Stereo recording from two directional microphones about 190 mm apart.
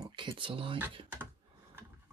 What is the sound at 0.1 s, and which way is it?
Speech, 25° right (ahead or behind).